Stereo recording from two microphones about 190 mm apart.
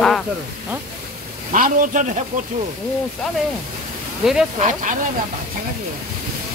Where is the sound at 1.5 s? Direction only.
45° right (ahead or behind).